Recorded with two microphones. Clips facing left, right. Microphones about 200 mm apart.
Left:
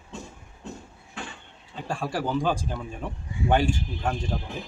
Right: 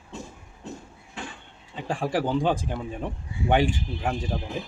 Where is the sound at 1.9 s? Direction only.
15° right (ahead or behind).